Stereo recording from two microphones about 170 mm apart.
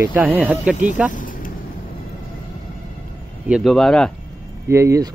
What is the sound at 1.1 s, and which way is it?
Vehicle, 50° left (ahead or behind).